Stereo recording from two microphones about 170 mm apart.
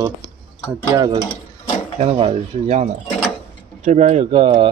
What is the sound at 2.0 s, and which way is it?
Speech, 35° right (ahead or behind).